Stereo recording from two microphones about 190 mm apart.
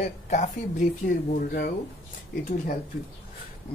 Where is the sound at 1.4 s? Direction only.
50° left (ahead or behind).